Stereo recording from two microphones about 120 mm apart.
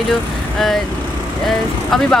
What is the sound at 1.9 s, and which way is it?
Speech, centre (ahead or behind).